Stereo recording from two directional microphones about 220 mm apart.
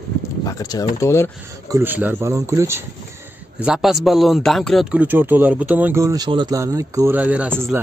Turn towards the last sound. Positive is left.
turn(degrees=-5)  # may be behind; listen again after turning